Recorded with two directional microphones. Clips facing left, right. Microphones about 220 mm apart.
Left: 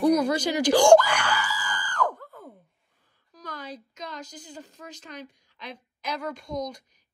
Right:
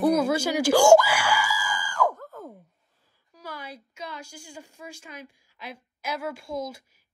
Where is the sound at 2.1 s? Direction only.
45° right (ahead or behind).